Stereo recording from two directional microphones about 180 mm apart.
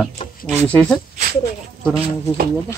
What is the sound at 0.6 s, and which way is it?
Speech, 10° left (ahead or behind).